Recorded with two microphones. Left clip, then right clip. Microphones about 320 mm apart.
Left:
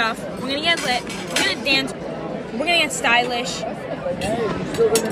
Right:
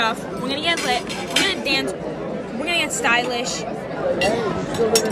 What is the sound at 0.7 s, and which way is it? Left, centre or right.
Speech, centre.